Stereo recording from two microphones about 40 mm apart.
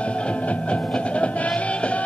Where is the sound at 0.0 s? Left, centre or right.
Left.